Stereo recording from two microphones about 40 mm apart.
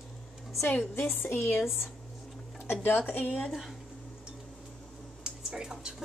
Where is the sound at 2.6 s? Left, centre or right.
Left.